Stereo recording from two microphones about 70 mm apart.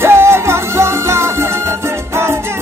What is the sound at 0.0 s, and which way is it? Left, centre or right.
Music, right.